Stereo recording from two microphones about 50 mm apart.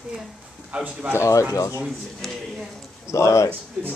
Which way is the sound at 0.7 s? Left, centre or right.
Right.